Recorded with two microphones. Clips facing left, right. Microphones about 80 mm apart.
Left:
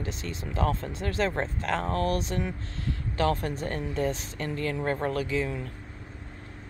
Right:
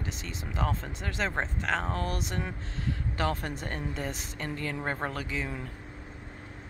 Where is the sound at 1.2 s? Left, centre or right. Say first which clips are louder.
Left 2 dB; right.